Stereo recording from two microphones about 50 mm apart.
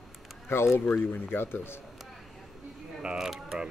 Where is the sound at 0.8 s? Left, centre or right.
Left.